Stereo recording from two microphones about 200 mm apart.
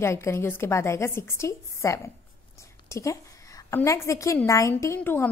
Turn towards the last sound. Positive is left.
turn(degrees=15)  # may be behind; listen again after turning